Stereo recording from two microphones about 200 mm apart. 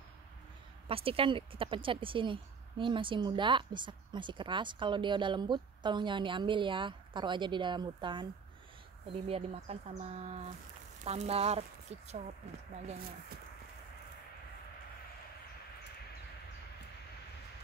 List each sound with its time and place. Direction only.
0.8 s a woman's voice: 25° right (ahead or behind)